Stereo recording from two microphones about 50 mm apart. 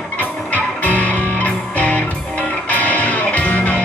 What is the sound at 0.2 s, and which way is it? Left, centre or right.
Music, left.